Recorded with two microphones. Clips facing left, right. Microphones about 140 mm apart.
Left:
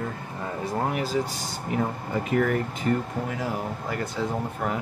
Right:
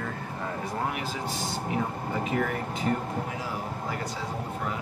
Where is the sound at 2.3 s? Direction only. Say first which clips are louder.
Left 7 dB; 55° left (ahead or behind).